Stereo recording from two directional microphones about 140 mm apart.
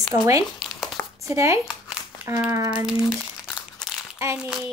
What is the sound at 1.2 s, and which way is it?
Speech, 20° right (ahead or behind).